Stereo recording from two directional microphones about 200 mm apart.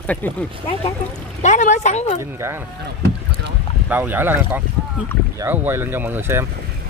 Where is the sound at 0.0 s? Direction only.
5° left (ahead or behind).